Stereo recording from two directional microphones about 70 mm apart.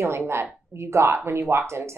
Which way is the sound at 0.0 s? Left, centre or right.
Right.